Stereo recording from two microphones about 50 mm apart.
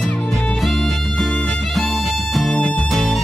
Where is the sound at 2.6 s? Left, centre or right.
Centre.